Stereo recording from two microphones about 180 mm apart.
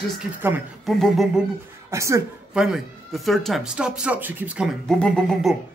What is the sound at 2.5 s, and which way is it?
A man's voice, 5° right (ahead or behind).